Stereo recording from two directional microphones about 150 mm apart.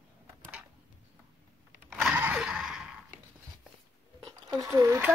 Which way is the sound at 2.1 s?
10° right (ahead or behind).